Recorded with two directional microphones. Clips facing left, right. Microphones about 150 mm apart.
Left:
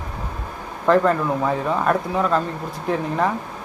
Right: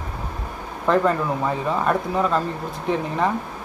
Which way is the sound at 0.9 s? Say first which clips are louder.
Left 2 dB; centre (ahead or behind).